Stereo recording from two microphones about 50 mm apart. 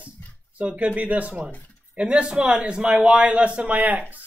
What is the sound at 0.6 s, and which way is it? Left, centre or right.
Speech, right.